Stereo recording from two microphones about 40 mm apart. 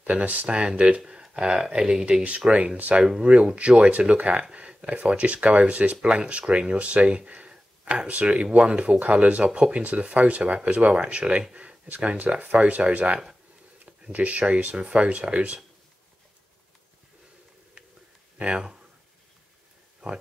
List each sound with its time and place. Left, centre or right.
0.0 s speech: right
0.5 s speech: right
1.0 s speech: centre
2.2 s speech: right
4.2 s speech: right
11.5 s a sound: right
12.2 s speech: right
18.5 s speech: centre